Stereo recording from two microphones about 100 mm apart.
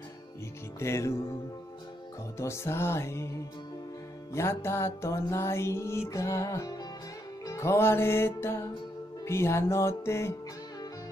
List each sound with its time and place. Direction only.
0.7 s music: 30° left (ahead or behind)
2.3 s music: 25° left (ahead or behind)